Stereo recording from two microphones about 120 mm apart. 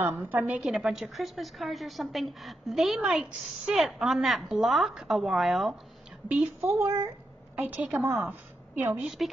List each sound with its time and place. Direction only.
0.0 s speech: 20° right (ahead or behind)
0.7 s a woman's voice: 5° right (ahead or behind)
6.2 s a woman's voice: 15° right (ahead or behind)